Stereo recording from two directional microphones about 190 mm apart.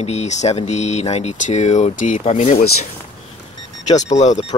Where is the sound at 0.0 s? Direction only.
35° left (ahead or behind).